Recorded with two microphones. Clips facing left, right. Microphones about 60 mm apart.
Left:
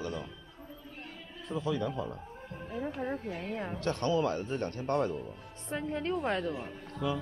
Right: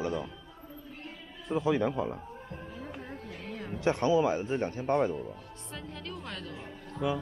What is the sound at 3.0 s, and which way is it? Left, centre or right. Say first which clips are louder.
Speech: left 6 dB; left.